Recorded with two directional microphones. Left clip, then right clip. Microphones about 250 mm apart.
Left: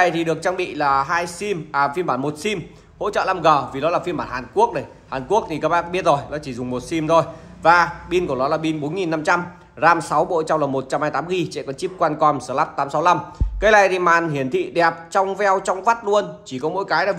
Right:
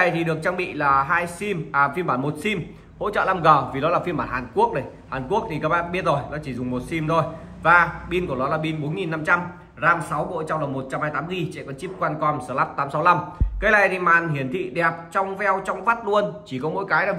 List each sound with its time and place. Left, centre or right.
0.0 s speech: centre